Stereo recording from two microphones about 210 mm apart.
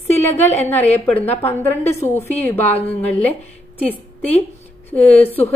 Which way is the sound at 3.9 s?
10° left (ahead or behind).